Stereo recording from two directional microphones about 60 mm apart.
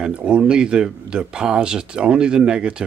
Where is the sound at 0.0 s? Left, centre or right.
Centre.